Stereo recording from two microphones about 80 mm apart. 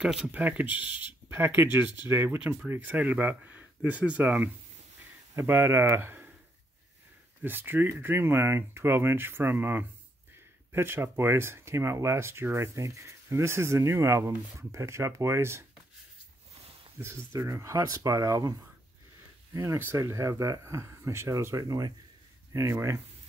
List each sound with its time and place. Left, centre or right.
0.0 s speech: centre
0.3 s speech: right
5.3 s speech: right
7.4 s speech: right
17.0 s speech: right
19.5 s speech: right
21.5 s speech: right
22.5 s speech: right